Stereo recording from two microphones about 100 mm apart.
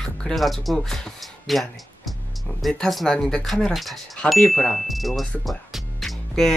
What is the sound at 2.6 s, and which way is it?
Speech, centre (ahead or behind).